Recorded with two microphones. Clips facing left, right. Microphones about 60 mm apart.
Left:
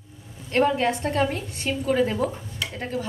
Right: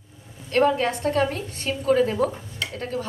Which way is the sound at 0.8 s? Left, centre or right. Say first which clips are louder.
Right 1 dB; centre.